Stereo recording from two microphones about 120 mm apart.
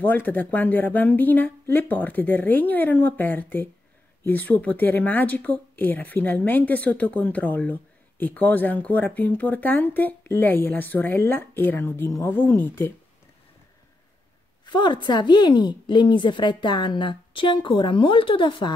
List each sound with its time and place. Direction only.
0.0 s speech: 15° left (ahead or behind)
14.6 s a woman's voice: 40° left (ahead or behind)